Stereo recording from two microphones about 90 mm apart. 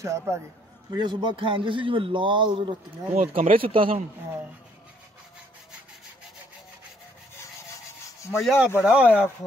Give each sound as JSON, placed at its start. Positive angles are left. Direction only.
{"t": 0.0, "sound": "a man's voice", "side_deg": -35}
{"t": 0.9, "sound": "a man's voice", "side_deg": -60}
{"t": 3.3, "sound": "speech", "side_deg": -90}
{"t": 8.4, "sound": "speech", "side_deg": 0}
{"t": 8.7, "sound": "speech", "side_deg": -15}